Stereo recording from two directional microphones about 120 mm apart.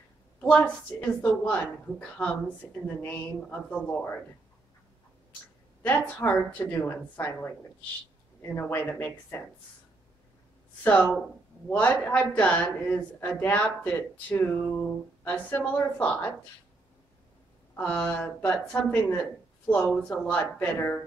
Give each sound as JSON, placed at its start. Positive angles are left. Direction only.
{"t": 0.4, "sound": "a woman's voice", "side_deg": 10}
{"t": 5.8, "sound": "a woman's voice", "side_deg": 15}
{"t": 10.8, "sound": "a woman's voice", "side_deg": 15}
{"t": 17.7, "sound": "a woman's voice", "side_deg": 10}